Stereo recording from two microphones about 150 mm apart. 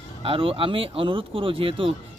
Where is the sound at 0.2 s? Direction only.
35° right (ahead or behind).